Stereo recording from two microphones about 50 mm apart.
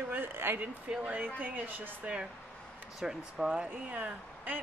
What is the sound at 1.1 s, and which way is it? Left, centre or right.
A woman's voice, right.